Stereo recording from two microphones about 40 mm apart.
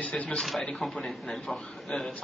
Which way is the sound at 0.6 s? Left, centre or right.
Centre.